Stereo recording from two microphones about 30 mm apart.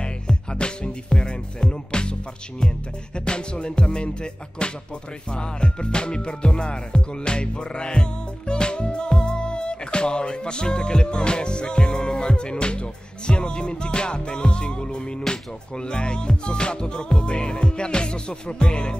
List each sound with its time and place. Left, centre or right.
0.0 s music: left
3.3 s music: left